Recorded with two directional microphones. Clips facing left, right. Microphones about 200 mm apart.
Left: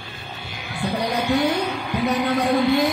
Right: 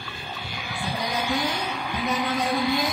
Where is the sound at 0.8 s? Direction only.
65° left (ahead or behind).